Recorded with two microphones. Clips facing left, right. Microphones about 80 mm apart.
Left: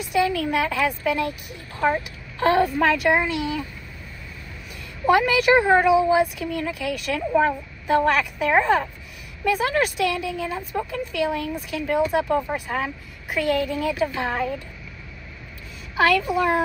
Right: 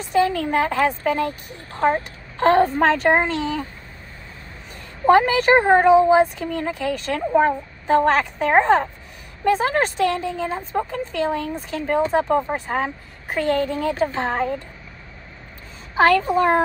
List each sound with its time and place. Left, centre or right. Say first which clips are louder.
0.1 s a woman's voice: right 3 dB; right
5.0 s a woman's voice: right 3 dB; right
16.0 s a woman's voice: right 3 dB; right